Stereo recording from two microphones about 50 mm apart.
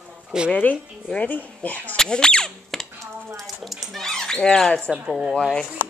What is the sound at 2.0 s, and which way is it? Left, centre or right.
Speech, centre.